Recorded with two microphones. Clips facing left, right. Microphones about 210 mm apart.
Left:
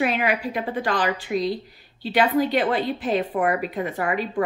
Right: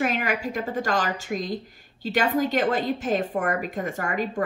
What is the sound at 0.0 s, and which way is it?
A woman's voice, 45° right (ahead or behind).